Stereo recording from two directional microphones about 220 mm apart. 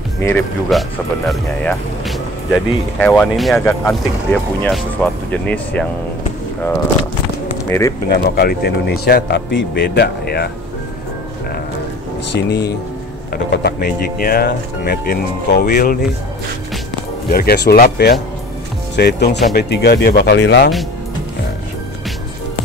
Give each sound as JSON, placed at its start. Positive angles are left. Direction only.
{"t": 0.2, "sound": "speech", "side_deg": 10}
{"t": 8.1, "sound": "speech", "side_deg": 45}
{"t": 12.4, "sound": "speech", "side_deg": 45}
{"t": 17.3, "sound": "speech", "side_deg": 45}